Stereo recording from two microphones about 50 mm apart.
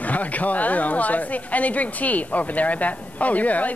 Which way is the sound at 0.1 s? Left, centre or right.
Left.